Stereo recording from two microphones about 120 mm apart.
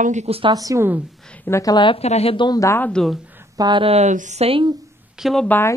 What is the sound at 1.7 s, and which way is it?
Speech, 45° left (ahead or behind).